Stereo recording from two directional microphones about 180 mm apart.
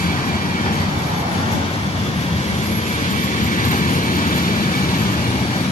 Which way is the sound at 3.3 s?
45° left (ahead or behind).